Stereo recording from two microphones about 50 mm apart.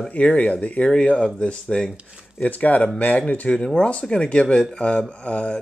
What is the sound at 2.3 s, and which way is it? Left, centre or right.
Speech, left.